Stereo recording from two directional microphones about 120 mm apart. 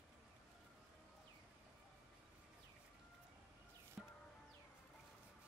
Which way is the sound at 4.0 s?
5° right (ahead or behind).